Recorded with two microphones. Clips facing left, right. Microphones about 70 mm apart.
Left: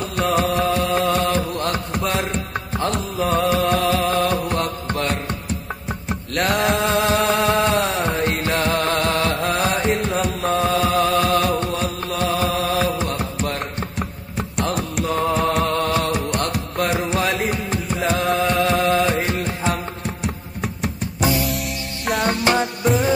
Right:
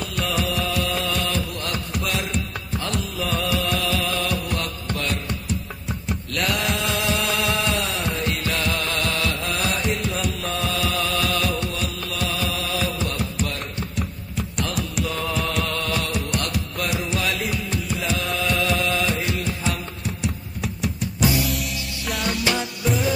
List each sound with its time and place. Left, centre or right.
0.2 s music: left
5.9 s music: left
22.2 s music: left